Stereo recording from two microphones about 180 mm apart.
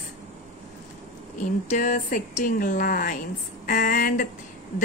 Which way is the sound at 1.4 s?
45° left (ahead or behind).